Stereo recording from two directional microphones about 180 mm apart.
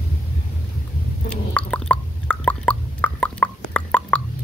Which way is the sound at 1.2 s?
5° left (ahead or behind).